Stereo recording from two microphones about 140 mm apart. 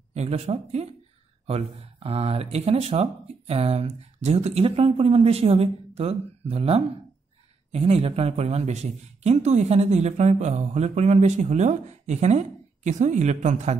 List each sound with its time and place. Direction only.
0.1 s speech: 50° right (ahead or behind)